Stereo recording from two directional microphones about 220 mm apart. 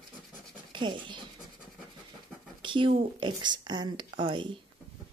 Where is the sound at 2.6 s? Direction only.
20° right (ahead or behind).